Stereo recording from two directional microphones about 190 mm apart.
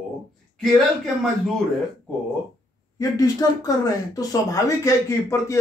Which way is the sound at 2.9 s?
20° left (ahead or behind).